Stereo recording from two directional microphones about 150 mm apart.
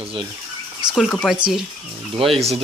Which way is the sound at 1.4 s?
5° right (ahead or behind).